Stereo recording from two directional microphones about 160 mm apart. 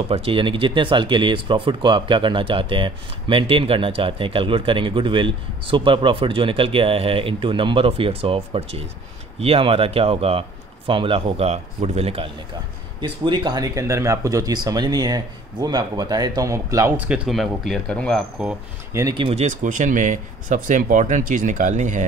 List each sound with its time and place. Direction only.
0.1 s speech: 35° right (ahead or behind); by 18.2 s 5° left (ahead or behind)
18.9 s speech: 25° right (ahead or behind)
19.2 s speech: 45° right (ahead or behind)